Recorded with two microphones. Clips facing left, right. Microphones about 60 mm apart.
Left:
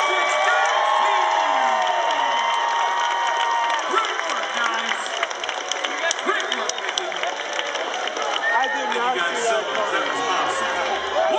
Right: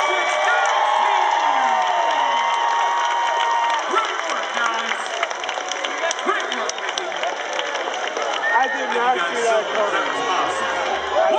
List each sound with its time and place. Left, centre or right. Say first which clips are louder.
0.1 s crowd: right 1 dB; centre
8.5 s run: right 2 dB; centre
10.4 s a sound: right 1 dB; centre